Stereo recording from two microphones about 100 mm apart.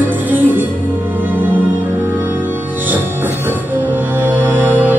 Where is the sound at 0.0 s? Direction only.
20° right (ahead or behind).